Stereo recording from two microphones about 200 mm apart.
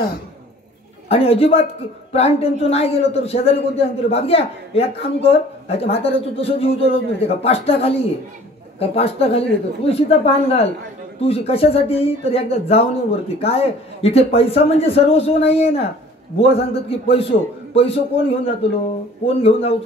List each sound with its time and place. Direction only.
1.0 s a man's voice: 30° left (ahead or behind)